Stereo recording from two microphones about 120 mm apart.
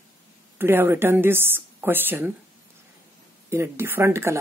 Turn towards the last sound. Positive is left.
turn(degrees=-20)  # may be behind; listen again after turning